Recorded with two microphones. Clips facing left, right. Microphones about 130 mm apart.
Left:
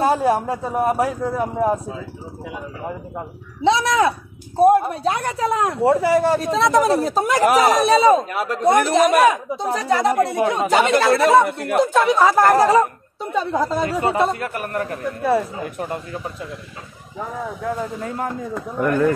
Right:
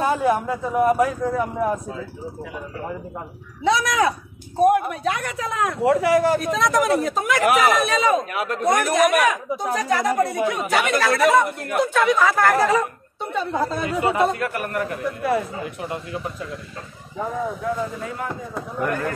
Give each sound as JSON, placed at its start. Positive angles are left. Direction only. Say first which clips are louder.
{"t": 0.0, "sound": "speech", "louder": "left 2 dB", "side_deg": 35}
{"t": 3.6, "sound": "speech", "louder": "left 3 dB", "side_deg": 25}
{"t": 15.6, "sound": "speech", "louder": "left 2 dB", "side_deg": 45}
{"t": 18.0, "sound": "speech", "louder": "left 4 dB", "side_deg": 40}